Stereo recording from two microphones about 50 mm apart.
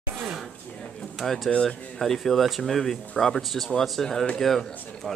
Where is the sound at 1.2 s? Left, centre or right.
Centre.